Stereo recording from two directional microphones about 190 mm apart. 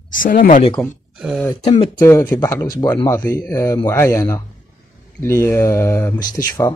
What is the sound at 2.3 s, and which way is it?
Speech, 15° left (ahead or behind).